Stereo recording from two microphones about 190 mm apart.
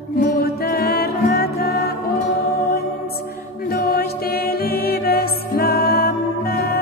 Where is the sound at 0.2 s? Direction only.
55° left (ahead or behind).